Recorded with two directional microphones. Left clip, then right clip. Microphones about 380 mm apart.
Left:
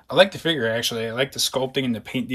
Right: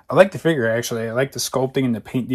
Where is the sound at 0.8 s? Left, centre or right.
Centre.